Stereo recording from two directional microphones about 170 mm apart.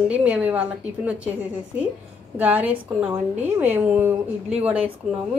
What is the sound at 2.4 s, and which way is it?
A woman's voice, 10° right (ahead or behind).